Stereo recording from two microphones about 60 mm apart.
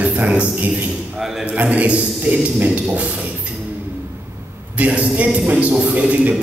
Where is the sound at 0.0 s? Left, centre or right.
Right.